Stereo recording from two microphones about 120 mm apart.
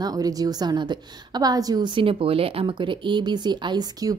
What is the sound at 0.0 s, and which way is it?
A woman's voice, 30° right (ahead or behind).